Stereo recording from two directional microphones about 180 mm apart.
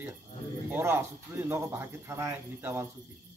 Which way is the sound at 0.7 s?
10° right (ahead or behind).